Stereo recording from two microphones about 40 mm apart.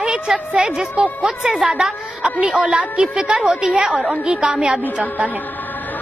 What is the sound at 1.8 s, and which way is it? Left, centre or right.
A woman's voice, right.